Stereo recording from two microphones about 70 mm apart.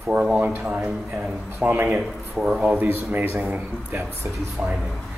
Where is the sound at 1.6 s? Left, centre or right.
Right.